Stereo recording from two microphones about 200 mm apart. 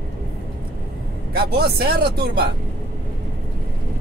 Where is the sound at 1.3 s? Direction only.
50° right (ahead or behind).